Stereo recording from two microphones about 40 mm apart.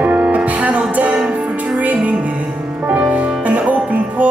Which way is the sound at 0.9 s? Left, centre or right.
Right.